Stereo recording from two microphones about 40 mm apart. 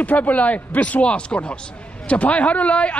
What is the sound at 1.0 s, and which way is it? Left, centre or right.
A man's voice, left.